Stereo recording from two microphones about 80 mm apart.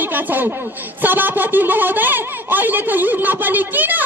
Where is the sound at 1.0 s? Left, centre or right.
Right.